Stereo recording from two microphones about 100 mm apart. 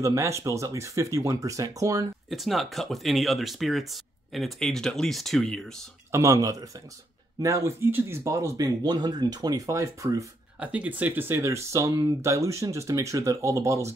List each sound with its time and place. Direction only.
0.0 s speech: 30° right (ahead or behind)
2.2 s speech: centre (ahead or behind)
6.1 s speech: 35° right (ahead or behind)
10.6 s speech: 15° right (ahead or behind); by 13.9 s 30° right (ahead or behind)